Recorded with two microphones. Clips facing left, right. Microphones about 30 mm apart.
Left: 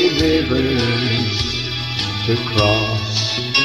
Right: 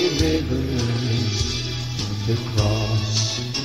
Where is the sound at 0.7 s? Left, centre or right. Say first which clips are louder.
Left 7 dB; left.